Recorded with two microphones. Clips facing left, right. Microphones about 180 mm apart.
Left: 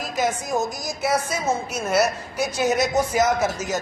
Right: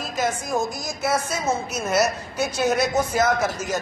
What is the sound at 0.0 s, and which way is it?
A woman's voice, 15° left (ahead or behind).